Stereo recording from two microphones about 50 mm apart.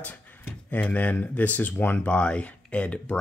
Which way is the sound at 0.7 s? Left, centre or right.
Left.